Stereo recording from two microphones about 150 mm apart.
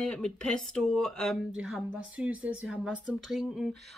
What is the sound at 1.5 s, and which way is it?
Speech, 10° right (ahead or behind).